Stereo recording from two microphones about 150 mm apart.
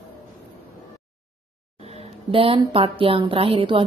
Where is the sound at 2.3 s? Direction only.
35° right (ahead or behind).